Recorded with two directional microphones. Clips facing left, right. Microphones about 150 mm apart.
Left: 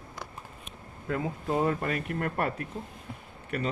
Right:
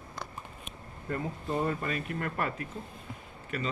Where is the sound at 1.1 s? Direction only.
80° left.